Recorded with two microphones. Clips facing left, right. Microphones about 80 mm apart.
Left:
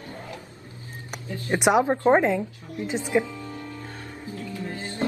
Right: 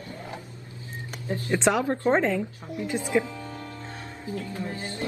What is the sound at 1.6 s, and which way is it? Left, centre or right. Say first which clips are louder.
Speech: left 4 dB; centre.